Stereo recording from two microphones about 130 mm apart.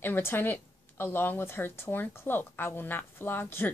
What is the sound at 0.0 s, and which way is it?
A woman's voice, 15° left (ahead or behind).